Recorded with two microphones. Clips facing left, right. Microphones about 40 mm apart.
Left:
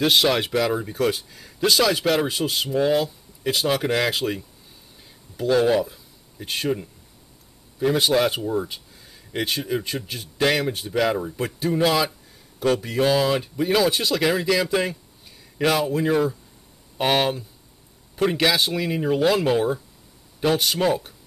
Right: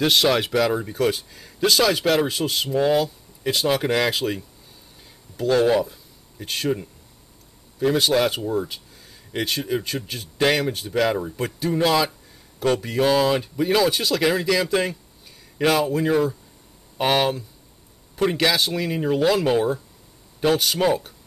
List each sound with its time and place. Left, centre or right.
0.0 s speech: centre